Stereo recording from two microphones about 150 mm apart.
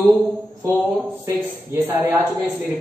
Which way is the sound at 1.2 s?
15° right (ahead or behind).